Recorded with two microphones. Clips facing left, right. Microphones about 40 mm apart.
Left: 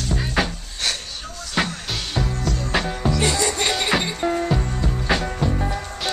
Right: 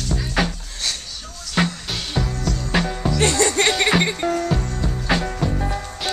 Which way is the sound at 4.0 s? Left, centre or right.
Right.